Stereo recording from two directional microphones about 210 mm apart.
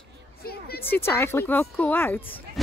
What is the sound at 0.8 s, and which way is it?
Speech, 10° left (ahead or behind).